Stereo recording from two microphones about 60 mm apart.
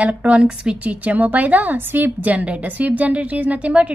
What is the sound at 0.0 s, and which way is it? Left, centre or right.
A woman's voice, right.